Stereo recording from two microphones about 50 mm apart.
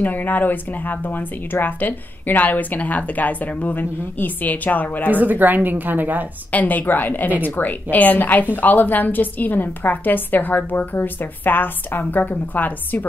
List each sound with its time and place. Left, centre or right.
0.0 s speech: left
5.1 s a woman's voice: right
6.5 s speech: left